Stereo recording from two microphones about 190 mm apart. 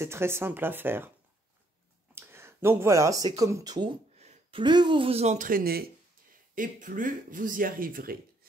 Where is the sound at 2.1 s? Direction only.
10° right (ahead or behind).